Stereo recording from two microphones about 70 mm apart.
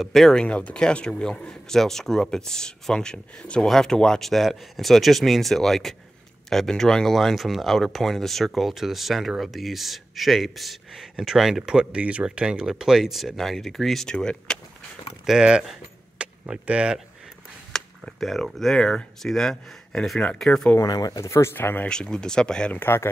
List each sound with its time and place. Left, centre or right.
0.0 s a man's voice: centre
15.2 s speech: centre
17.7 s a man's voice: centre
20.8 s speech: left
21.3 s speech: left
21.8 s a man's voice: centre
22.7 s speech: left